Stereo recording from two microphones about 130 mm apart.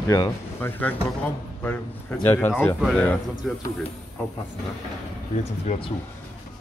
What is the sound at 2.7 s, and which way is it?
Speech, centre (ahead or behind).